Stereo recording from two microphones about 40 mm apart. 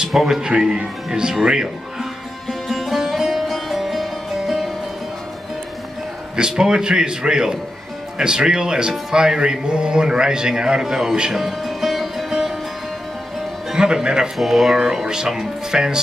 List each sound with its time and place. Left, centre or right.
0.2 s speech: centre
2.7 s music: centre
6.3 s a man's voice: centre
13.9 s music: centre
14.4 s speech: centre